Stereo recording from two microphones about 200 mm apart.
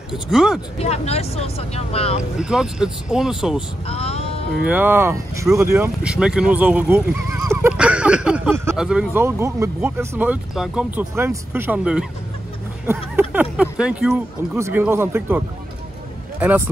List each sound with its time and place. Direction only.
0.1 s speech: centre (ahead or behind)
0.7 s speech: 30° left (ahead or behind)
2.3 s speech: 5° right (ahead or behind)
3.8 s speech: 30° left (ahead or behind)
4.6 s speech: 10° right (ahead or behind)